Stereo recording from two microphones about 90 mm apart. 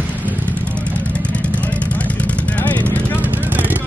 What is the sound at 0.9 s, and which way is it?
Vehicle, 15° left (ahead or behind).